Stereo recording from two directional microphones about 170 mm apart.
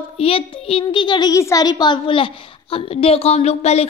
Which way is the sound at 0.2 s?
35° left (ahead or behind).